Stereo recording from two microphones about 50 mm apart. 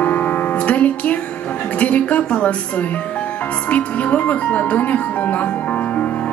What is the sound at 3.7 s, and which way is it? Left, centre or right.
Music, left.